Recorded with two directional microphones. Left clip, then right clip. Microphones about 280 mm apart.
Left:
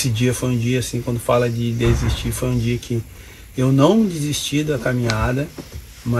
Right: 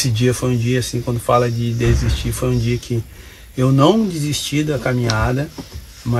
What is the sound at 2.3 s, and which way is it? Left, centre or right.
Speech, centre.